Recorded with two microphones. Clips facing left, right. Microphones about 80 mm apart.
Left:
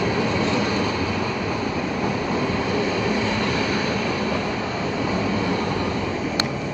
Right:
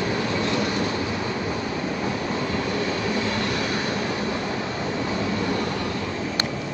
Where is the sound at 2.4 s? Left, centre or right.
Centre.